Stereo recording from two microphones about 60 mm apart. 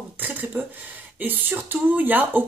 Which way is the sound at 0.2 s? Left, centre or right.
Right.